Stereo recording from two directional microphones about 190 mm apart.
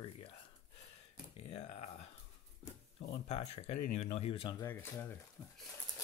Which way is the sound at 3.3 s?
35° left (ahead or behind).